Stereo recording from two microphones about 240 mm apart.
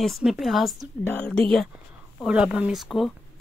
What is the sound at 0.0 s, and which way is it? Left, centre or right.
Speech, centre.